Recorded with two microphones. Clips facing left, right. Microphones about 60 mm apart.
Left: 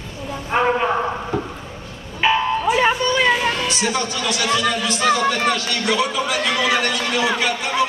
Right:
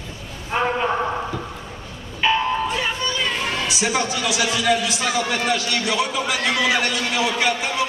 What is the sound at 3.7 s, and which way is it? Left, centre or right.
A man's voice, centre.